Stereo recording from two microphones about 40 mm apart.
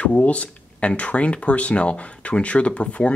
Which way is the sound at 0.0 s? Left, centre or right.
Left.